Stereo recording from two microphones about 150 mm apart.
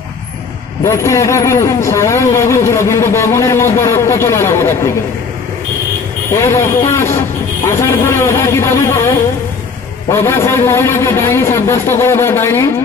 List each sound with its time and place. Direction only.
0.8 s speech: 20° left (ahead or behind)
6.3 s a man's voice: 20° left (ahead or behind)